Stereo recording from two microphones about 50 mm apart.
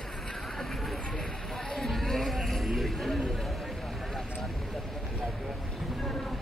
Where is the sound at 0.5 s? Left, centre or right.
Centre.